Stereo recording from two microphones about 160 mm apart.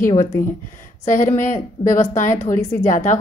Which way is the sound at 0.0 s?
50° left (ahead or behind).